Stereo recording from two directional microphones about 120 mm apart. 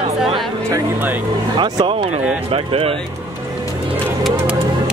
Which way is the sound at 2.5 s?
55° right (ahead or behind).